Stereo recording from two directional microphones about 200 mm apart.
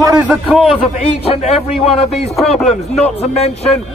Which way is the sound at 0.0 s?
15° right (ahead or behind).